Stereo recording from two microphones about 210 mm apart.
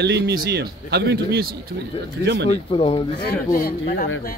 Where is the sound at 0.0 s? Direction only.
50° right (ahead or behind).